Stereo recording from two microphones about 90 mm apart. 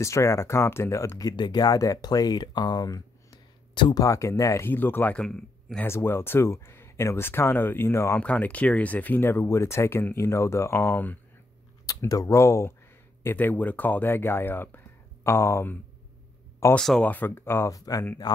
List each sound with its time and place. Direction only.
0.0 s speech: 35° left (ahead or behind)
1.3 s speech: 55° left (ahead or behind); by 4.6 s 35° left (ahead or behind)
4.6 s speech: 25° left (ahead or behind)
5.2 s speech: 5° left (ahead or behind)
5.9 s speech: 30° left (ahead or behind)
8.2 s speech: 15° left (ahead or behind)
12.0 s speech: 35° left (ahead or behind)
16.7 s speech: 5° left (ahead or behind)
17.0 s speech: 20° left (ahead or behind)
17.7 s speech: 40° left (ahead or behind)
18.2 s speech: 50° left (ahead or behind)